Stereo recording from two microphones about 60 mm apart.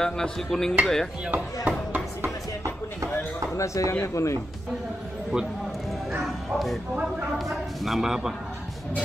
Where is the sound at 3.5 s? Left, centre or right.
Left.